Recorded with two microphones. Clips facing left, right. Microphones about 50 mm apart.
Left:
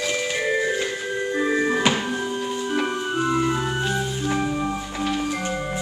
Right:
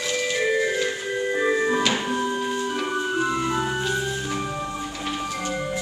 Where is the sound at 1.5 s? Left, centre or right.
Centre.